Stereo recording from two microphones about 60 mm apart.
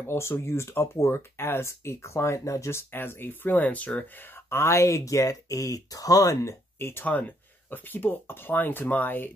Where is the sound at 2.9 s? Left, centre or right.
Left.